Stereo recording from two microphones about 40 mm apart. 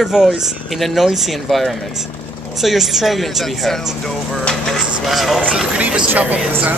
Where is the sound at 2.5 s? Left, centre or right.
Centre.